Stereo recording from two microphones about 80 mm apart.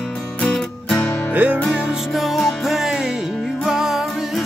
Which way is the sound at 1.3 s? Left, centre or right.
Centre.